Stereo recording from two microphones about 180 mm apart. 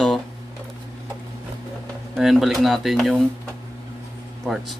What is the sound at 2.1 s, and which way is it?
Speech, centre (ahead or behind).